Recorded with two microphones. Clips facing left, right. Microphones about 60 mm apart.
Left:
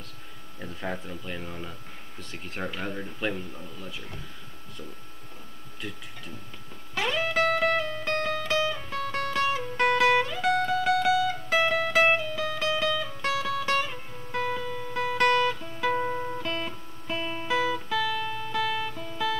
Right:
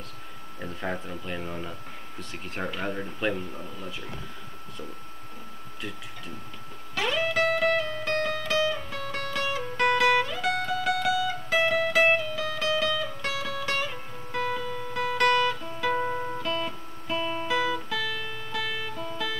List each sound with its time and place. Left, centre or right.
0.6 s speech: centre
5.8 s speech: centre
7.0 s music: centre
10.4 s music: left
10.8 s music: centre
12.4 s music: centre
16.4 s music: left
17.1 s music: centre